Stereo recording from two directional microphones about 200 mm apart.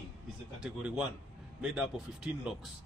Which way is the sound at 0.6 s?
5° right (ahead or behind).